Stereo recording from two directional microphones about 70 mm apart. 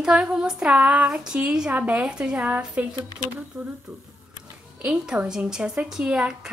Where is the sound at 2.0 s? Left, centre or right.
Centre.